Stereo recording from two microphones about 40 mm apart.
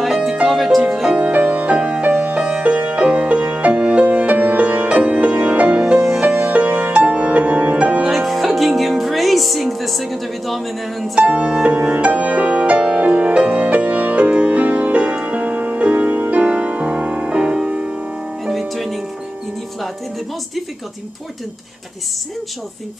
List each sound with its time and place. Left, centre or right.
0.0 s music: centre
0.6 s music: centre
1.1 s music: right
5.9 s music: centre
6.4 s music: right
8.1 s music: centre
11.1 s music: right
18.4 s music: centre